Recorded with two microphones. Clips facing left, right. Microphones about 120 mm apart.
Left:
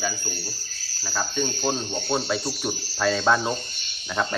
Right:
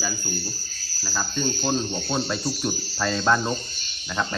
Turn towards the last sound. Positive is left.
turn(degrees=5)  # may be behind; listen again after turning